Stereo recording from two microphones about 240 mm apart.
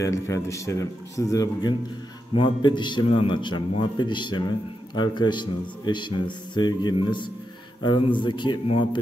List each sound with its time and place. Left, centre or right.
0.0 s a man's voice: centre